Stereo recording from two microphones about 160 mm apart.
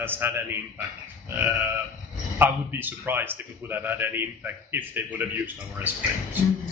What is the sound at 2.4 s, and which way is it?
A man's voice, 10° right (ahead or behind).